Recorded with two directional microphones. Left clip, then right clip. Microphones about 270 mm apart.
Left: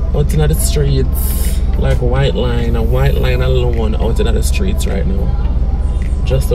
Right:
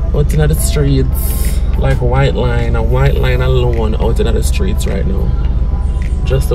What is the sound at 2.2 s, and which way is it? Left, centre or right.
Speech, centre.